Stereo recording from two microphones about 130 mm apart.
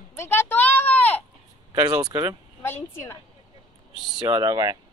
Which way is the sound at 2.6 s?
20° left (ahead or behind).